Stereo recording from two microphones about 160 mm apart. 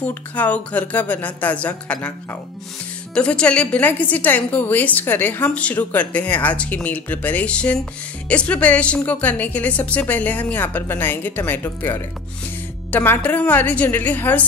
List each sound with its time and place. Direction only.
0.0 s a woman's voice: 10° left (ahead or behind)
3.2 s a woman's voice: 5° left (ahead or behind)